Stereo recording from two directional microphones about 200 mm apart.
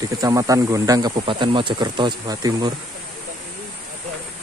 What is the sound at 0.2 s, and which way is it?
Speech, 15° right (ahead or behind).